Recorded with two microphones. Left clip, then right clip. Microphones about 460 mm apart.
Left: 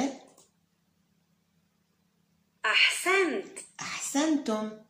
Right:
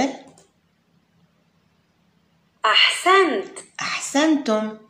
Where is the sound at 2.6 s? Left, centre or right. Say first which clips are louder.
Right 8 dB; right.